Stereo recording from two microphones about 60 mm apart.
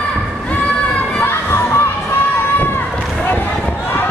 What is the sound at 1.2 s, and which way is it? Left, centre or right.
Crowd, left.